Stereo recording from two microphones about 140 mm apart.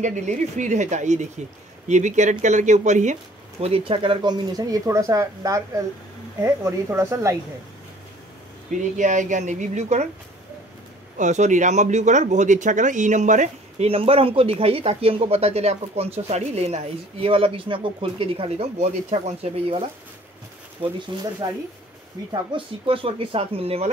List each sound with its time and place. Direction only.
0.0 s speech: 60° right (ahead or behind)
3.6 s speech: 40° right (ahead or behind); by 7.3 s 20° right (ahead or behind)
8.9 s speech: 60° right (ahead or behind)
11.1 s speech: 55° right (ahead or behind)
13.8 s speech: 45° right (ahead or behind)
20.8 s speech: 30° right (ahead or behind); by 23.9 s 45° right (ahead or behind)